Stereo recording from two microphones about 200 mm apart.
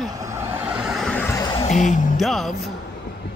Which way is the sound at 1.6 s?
35° left (ahead or behind).